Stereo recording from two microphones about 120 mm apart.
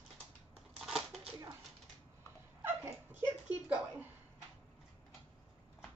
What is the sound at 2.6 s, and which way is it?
Dog, 20° right (ahead or behind).